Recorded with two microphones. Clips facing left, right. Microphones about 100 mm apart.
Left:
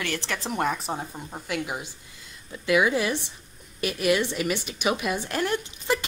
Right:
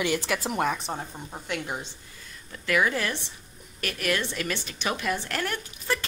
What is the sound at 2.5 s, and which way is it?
A woman's voice, 15° left (ahead or behind).